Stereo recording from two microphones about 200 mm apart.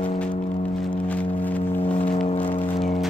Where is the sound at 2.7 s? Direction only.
Centre (ahead or behind).